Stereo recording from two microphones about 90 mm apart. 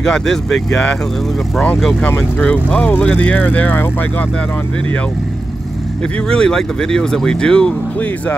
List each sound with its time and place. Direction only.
0.0 s speech: 5° left (ahead or behind)
2.0 s speech: 15° left (ahead or behind)
6.3 s speech: 10° left (ahead or behind)